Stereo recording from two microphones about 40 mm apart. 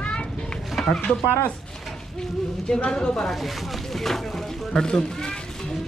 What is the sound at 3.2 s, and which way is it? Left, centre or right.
Speech, centre.